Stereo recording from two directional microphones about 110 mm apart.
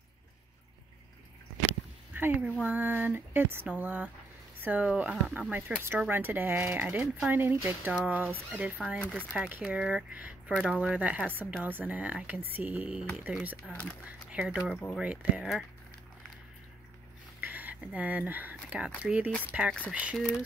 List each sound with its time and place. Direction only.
2.1 s speech: 15° right (ahead or behind)
9.5 s speech: 15° right (ahead or behind)
13.7 s speech: 10° left (ahead or behind)
14.0 s speech: 10° right (ahead or behind)
17.4 s speech: 15° right (ahead or behind)